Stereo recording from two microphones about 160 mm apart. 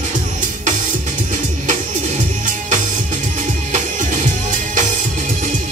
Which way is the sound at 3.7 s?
50° right (ahead or behind).